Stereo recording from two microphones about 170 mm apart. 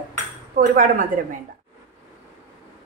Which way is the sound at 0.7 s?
55° right (ahead or behind).